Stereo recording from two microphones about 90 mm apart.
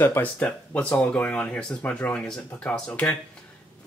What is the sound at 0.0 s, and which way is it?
Speech, 20° left (ahead or behind).